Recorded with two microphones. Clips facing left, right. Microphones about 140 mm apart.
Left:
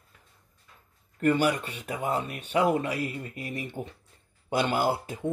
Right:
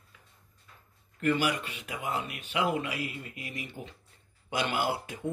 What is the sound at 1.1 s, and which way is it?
Speech, 40° left (ahead or behind).